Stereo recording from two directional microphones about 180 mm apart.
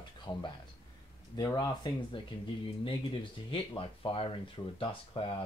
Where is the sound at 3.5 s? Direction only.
30° left (ahead or behind).